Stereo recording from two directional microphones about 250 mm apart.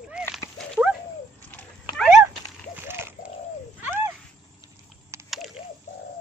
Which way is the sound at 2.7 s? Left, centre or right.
Centre.